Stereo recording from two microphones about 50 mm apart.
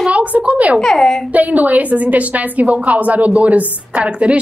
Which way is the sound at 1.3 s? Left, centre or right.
Right.